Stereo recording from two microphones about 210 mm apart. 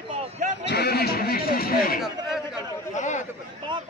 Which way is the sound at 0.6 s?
50° left (ahead or behind).